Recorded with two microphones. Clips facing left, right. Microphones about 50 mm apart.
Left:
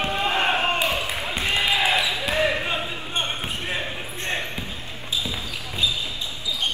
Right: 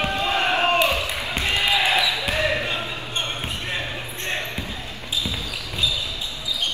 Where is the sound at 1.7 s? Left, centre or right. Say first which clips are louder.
Right 1 dB; right.